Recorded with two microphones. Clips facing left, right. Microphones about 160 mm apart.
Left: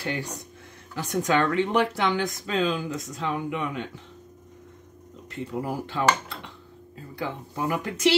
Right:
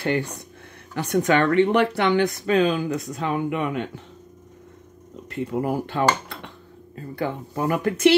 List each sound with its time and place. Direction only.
0.0 s speech: 60° right (ahead or behind)
5.3 s speech: 60° right (ahead or behind)